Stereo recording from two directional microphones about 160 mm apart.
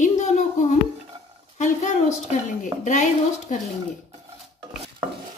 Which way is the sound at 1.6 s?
50° left (ahead or behind).